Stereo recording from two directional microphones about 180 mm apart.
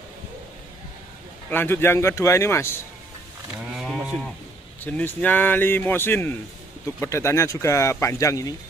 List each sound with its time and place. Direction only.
1.5 s speech: 10° left (ahead or behind)
3.7 s livestock: centre (ahead or behind)
4.8 s speech: 10° left (ahead or behind)